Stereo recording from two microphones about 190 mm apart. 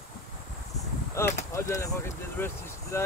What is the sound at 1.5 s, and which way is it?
Speech, 15° left (ahead or behind).